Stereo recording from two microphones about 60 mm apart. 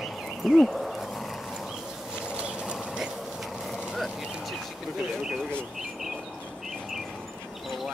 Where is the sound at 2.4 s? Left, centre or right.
Centre.